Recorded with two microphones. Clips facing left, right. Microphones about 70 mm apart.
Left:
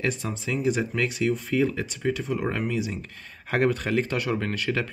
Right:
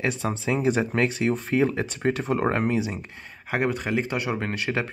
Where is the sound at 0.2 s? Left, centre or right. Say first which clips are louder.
Right 3 dB; right.